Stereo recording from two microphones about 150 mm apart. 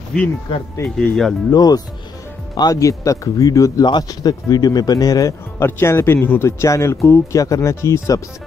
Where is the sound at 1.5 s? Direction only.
25° left (ahead or behind).